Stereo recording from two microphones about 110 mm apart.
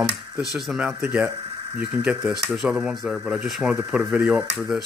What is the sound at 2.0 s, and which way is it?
Speech, 5° right (ahead or behind).